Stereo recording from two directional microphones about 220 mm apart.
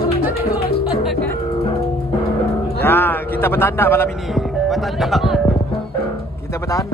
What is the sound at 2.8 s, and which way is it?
A man's voice, 10° left (ahead or behind).